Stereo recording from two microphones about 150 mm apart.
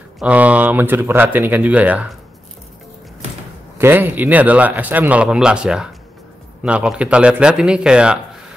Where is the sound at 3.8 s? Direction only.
15° right (ahead or behind).